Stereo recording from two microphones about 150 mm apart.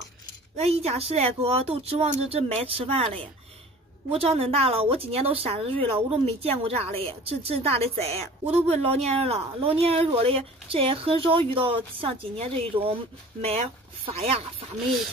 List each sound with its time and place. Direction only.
0.7 s speech: 40° right (ahead or behind)
4.1 s speech: 40° right (ahead or behind)